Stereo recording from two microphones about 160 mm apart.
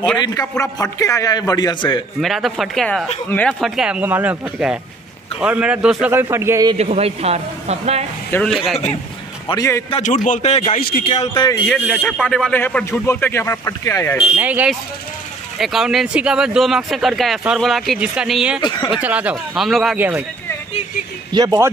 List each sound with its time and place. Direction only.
0.2 s a man's voice: 25° left (ahead or behind)
2.1 s speech: centre (ahead or behind)
3.6 s a man's voice: 5° right (ahead or behind)
6.1 s a man's voice: 15° right (ahead or behind)
6.8 s speech: 40° right (ahead or behind)
8.5 s speech: centre (ahead or behind)
9.5 s a man's voice: 20° left (ahead or behind)
10.0 s a man's voice: 50° left (ahead or behind); by 11.5 s 35° left (ahead or behind)
11.6 s speech: 5° left (ahead or behind)
14.1 s a man's voice: 10° right (ahead or behind)
18.6 s a man's voice: 30° left (ahead or behind)
18.9 s speech: 10° right (ahead or behind)
20.0 s a man's voice: 10° right (ahead or behind)
21.3 s speech: 25° right (ahead or behind)